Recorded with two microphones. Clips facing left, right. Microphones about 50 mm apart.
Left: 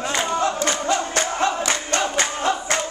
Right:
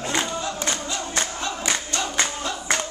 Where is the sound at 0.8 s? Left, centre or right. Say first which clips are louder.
Left 7 dB; left.